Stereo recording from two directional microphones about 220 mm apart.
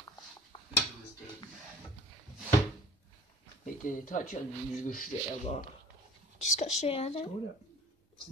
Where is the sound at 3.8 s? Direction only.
35° left (ahead or behind).